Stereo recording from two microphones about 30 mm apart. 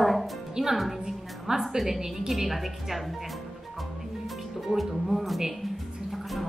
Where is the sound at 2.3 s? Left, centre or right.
Centre.